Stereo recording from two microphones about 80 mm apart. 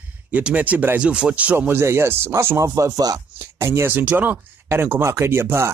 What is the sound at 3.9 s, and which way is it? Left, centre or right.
Speech, right.